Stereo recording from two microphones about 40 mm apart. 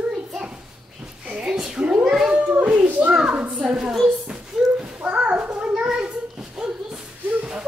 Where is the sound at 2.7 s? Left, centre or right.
Right.